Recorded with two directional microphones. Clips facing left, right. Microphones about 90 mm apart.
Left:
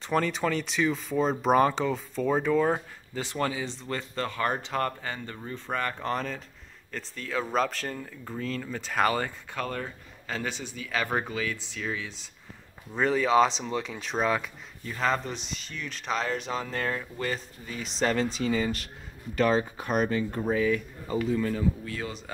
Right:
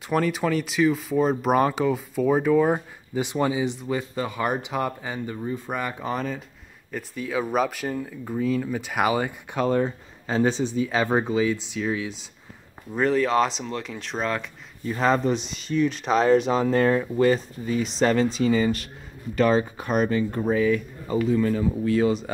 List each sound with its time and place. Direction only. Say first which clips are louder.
0.0 s speech: right 3 dB; 5° right (ahead or behind)
11.8 s speech: right 4 dB; 5° right (ahead or behind)
12.9 s speech: right 2 dB; centre (ahead or behind)
14.9 s speech: right 7 dB; 15° right (ahead or behind)
16.6 s speech: right 11 dB; 25° right (ahead or behind)
18.0 s speech: right 5 dB; 35° right (ahead or behind)
19.3 s speech: right 4 dB; 65° right (ahead or behind)
21.2 s speech: right 6 dB; 40° right (ahead or behind)
21.8 s speech: right 14 dB; 15° right (ahead or behind)